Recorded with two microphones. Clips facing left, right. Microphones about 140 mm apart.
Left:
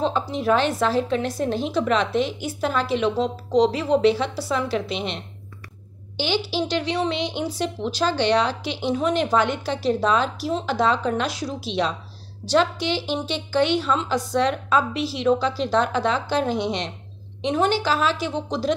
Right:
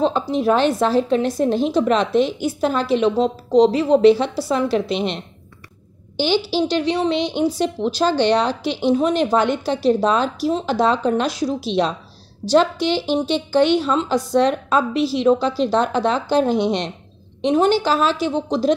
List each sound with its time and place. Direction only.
0.0 s a woman's voice: 30° right (ahead or behind)
6.1 s a woman's voice: 40° right (ahead or behind)